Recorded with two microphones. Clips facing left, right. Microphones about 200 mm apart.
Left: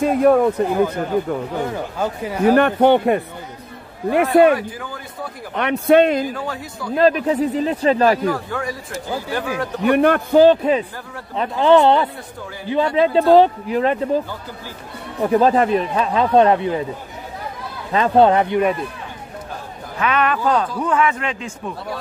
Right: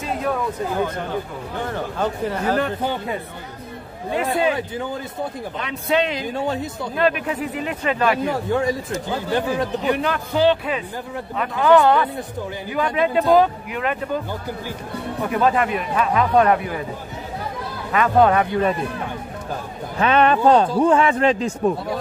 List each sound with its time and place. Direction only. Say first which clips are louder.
0.0 s speech: left 10 dB; 55° left (ahead or behind)
1.7 s speech: even; 10° left (ahead or behind)
2.5 s speech: left 9 dB; 70° left (ahead or behind)
5.6 s speech: left 8 dB; 60° left (ahead or behind)
6.2 s speech: right 2 dB; 25° right (ahead or behind)
7.0 s speech: left 6 dB; 35° left (ahead or behind)
8.3 s speech: right 2 dB; 25° right (ahead or behind)
9.8 s a man's voice: left 7 dB; 60° left (ahead or behind); by 10.8 s 40° left (ahead or behind)
11.3 s speech: left 2 dB; 25° left (ahead or behind)
15.2 s speech: left 5 dB; 35° left (ahead or behind)
17.9 s speech: left 2 dB; 25° left (ahead or behind)
20.0 s speech: right 3 dB; 30° right (ahead or behind)